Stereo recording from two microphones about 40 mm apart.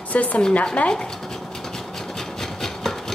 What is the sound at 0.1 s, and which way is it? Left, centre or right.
Speech, left.